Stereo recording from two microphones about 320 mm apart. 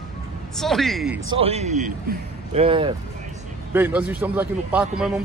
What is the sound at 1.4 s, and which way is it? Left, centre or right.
A man's voice, centre.